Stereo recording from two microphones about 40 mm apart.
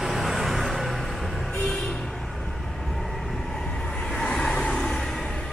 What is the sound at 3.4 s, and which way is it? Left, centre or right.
Vehicle, centre.